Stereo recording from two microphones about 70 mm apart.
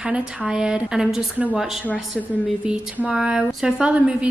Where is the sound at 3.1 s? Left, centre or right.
Centre.